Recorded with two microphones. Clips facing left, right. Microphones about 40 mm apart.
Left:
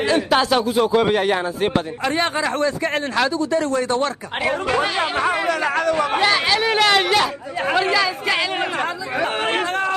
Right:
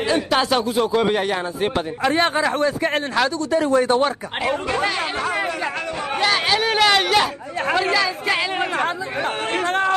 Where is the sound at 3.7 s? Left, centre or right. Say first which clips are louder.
Right 3 dB; right.